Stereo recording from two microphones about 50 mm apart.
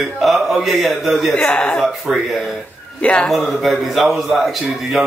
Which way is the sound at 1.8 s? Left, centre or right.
Centre.